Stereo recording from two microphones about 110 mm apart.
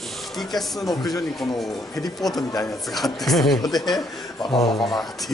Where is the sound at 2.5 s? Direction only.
30° left (ahead or behind).